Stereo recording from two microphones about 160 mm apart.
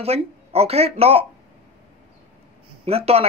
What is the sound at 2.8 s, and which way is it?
Speech, 40° right (ahead or behind).